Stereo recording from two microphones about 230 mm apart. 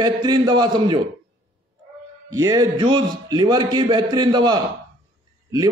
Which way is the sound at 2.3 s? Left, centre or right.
Centre.